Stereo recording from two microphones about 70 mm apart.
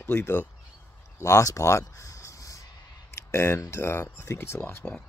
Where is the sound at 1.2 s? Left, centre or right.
Left.